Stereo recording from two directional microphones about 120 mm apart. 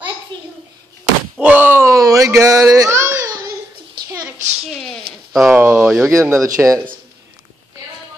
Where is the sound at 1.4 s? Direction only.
15° right (ahead or behind).